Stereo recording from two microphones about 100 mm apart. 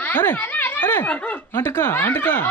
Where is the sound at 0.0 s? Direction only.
20° left (ahead or behind).